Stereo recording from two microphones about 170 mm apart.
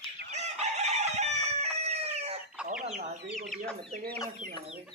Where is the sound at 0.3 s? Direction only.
40° right (ahead or behind).